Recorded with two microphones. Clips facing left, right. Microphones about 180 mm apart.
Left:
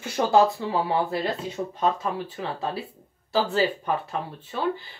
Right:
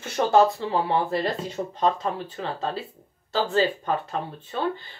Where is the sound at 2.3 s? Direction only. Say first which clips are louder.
Right 1 dB; 10° left (ahead or behind).